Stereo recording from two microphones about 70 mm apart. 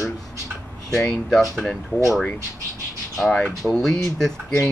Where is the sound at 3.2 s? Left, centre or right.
Centre.